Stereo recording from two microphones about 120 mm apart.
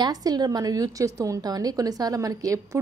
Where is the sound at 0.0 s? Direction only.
30° right (ahead or behind).